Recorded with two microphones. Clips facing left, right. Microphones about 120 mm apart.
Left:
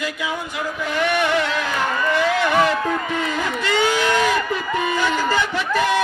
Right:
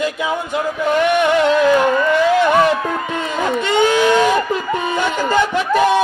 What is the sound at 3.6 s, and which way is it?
Speech, 20° right (ahead or behind).